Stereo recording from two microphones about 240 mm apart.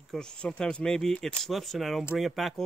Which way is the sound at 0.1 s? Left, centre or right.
Centre.